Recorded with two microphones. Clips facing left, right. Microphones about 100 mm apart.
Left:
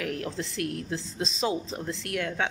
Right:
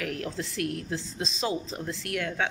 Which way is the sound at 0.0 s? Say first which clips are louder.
Left 1 dB; 25° left (ahead or behind).